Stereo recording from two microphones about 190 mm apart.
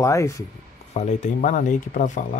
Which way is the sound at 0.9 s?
40° left (ahead or behind).